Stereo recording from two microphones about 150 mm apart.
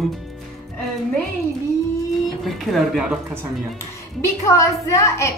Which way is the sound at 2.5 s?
Centre (ahead or behind).